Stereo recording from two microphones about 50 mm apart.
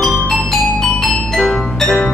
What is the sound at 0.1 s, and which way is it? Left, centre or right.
Music, centre.